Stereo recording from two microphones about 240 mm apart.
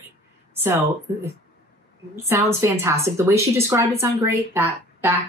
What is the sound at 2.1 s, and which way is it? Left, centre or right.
A woman's voice, centre.